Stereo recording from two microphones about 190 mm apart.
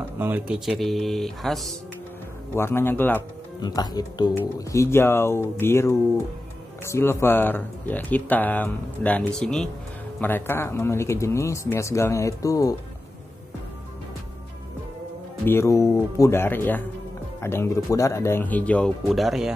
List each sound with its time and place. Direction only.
0.2 s speech: 10° right (ahead or behind)
2.5 s speech: 15° left (ahead or behind)
3.6 s speech: 20° left (ahead or behind)
15.4 s speech: 15° left (ahead or behind); by 19.5 s centre (ahead or behind)